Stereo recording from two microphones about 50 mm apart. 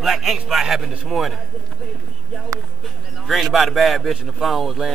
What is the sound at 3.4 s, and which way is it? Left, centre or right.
Speech, centre.